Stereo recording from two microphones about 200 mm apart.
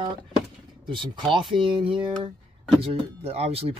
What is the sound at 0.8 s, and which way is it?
Speech, 25° right (ahead or behind).